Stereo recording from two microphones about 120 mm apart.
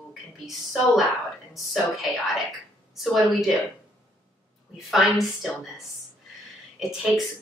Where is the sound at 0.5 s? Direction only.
Centre (ahead or behind).